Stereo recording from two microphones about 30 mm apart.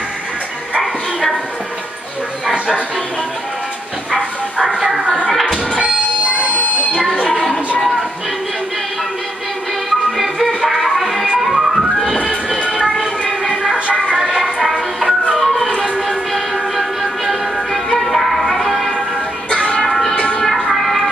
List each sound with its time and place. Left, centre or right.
5.2 s music: centre
5.8 s train: right
10.1 s music: centre
12.5 s train: right
14.1 s music: centre
14.4 s music: centre
19.9 s a sound: centre